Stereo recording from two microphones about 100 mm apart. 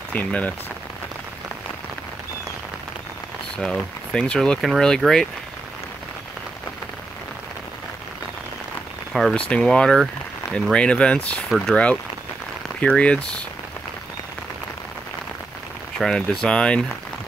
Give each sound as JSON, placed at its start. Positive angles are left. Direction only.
{"t": 0.1, "sound": "speech", "side_deg": 15}
{"t": 3.5, "sound": "speech", "side_deg": 10}
{"t": 9.1, "sound": "speech", "side_deg": 0}
{"t": 16.0, "sound": "speech", "side_deg": 5}